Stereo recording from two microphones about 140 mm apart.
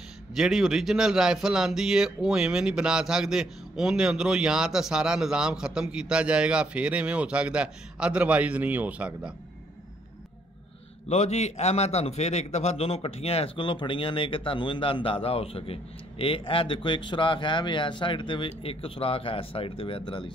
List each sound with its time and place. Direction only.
0.4 s speech: 5° right (ahead or behind)
11.1 s a man's voice: 55° left (ahead or behind); by 20.3 s 35° left (ahead or behind)